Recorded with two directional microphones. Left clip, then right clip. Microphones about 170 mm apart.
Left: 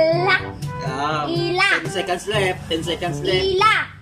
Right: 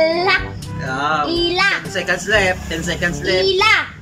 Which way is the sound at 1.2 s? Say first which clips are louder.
Right 1 dB; 5° left (ahead or behind).